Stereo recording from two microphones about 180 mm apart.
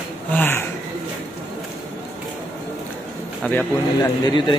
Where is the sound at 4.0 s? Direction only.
25° left (ahead or behind).